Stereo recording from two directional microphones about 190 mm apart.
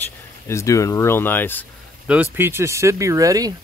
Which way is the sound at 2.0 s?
10° right (ahead or behind).